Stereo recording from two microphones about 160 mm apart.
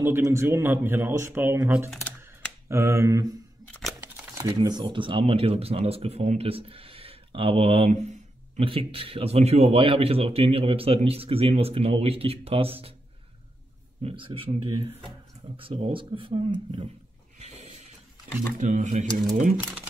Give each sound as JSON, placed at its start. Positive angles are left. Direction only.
{"t": 0.0, "sound": "speech", "side_deg": -15}
{"t": 2.0, "sound": "camera", "side_deg": 10}
{"t": 2.7, "sound": "speech", "side_deg": -15}
{"t": 14.0, "sound": "speech", "side_deg": -35}
{"t": 17.4, "sound": "a sound", "side_deg": -40}
{"t": 18.6, "sound": "speech", "side_deg": -50}
{"t": 19.5, "sound": "speech", "side_deg": -10}